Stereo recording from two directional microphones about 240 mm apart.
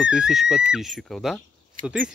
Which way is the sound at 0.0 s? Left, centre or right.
Centre.